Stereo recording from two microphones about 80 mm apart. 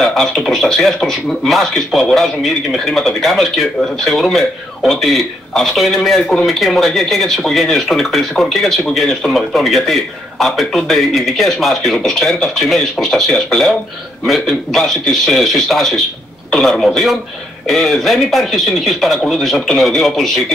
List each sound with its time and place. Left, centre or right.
0.0 s speech: centre